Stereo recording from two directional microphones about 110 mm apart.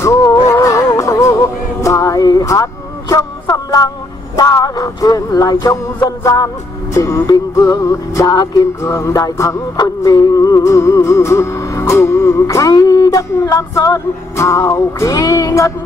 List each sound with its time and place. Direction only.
0.0 s music: 25° left (ahead or behind)
1.8 s a sound: 30° left (ahead or behind)
4.4 s music: 35° left (ahead or behind)